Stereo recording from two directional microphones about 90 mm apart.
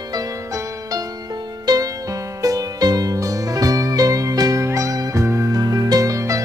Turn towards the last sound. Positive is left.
turn(degrees=-40)  # may be behind; listen again after turning